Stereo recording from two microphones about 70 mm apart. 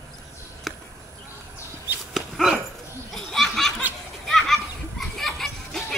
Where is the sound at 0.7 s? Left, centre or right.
Centre.